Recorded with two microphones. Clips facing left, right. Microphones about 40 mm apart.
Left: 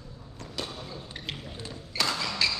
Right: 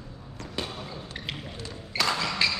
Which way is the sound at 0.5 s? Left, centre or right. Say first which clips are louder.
Right 2 dB; right.